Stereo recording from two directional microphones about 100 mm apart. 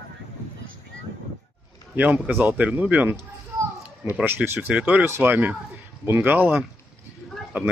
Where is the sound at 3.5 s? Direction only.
20° right (ahead or behind).